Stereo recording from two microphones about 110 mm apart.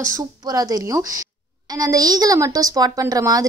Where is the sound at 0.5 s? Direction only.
35° right (ahead or behind).